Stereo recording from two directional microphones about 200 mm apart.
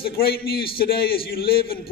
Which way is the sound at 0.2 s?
50° left (ahead or behind).